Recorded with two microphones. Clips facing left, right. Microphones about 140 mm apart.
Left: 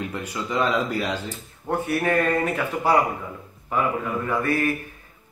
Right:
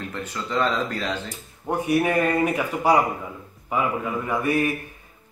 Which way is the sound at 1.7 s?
15° right (ahead or behind).